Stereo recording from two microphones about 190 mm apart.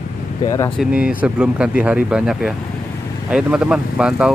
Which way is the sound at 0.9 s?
5° right (ahead or behind).